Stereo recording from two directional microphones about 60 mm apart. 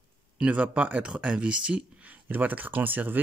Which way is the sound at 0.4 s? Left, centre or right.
Right.